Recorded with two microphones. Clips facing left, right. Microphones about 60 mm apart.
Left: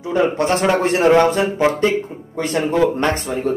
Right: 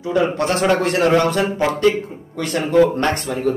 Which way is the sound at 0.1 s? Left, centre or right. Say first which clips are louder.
Left 1 dB; left.